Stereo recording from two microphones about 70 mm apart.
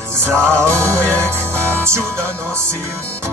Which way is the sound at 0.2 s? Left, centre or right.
Right.